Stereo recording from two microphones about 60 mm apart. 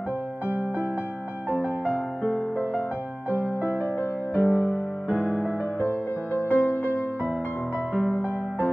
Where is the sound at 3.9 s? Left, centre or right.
Left.